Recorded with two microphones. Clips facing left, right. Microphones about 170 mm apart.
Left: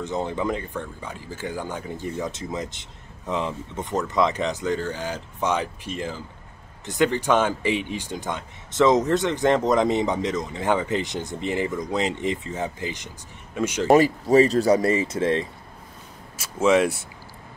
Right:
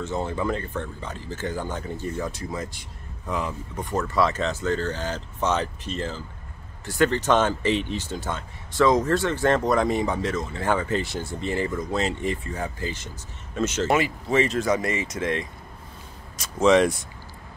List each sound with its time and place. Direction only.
0.0 s speech: 15° left (ahead or behind)
13.8 s speech: 40° left (ahead or behind)
16.3 s speech: 5° left (ahead or behind)